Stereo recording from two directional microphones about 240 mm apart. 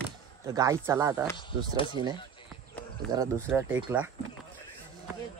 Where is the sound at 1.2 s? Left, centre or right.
Centre.